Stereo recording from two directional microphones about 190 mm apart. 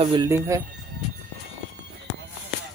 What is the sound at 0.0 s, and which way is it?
Speech, 25° right (ahead or behind).